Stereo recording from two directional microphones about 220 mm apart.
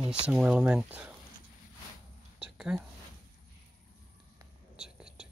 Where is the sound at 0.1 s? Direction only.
5° right (ahead or behind).